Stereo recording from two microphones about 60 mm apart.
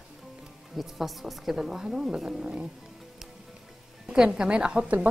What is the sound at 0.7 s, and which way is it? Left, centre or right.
A woman's voice, centre.